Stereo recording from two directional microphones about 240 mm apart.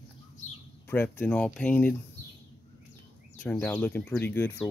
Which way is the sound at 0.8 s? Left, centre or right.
Centre.